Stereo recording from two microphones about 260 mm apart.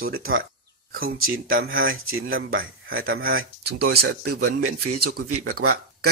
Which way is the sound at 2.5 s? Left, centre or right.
Right.